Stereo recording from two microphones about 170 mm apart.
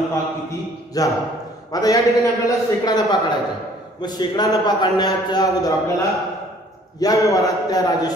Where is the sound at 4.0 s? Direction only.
25° left (ahead or behind).